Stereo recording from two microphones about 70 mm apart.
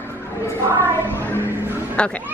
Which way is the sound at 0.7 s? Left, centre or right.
Right.